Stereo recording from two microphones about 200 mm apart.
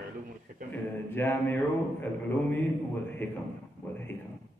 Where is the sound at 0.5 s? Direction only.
45° right (ahead or behind).